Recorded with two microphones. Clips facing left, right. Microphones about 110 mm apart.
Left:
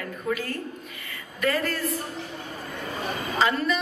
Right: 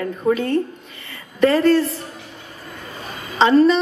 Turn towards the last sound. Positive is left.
turn(degrees=-30)  # may be behind; listen again after turning